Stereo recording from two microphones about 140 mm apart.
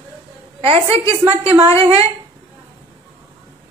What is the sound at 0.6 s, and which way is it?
Speech, 40° right (ahead or behind).